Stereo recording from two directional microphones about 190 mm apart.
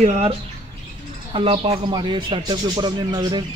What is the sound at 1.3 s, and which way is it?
A man's voice, 30° right (ahead or behind).